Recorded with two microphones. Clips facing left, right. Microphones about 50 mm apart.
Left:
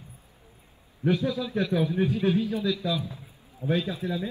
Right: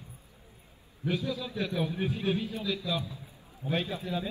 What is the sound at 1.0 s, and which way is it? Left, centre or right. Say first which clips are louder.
Speech: left 6 dB; left.